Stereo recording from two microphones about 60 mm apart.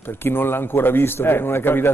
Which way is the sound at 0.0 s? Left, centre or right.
Left.